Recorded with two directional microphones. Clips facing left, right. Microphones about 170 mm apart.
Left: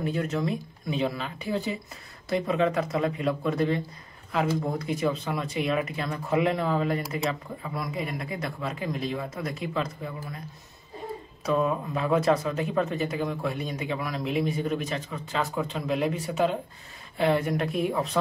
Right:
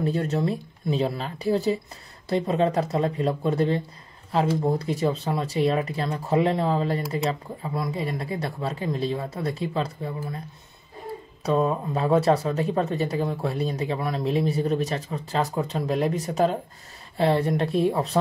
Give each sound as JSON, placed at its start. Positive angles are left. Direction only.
{"t": 0.0, "sound": "speech", "side_deg": -35}
{"t": 11.4, "sound": "speech", "side_deg": -35}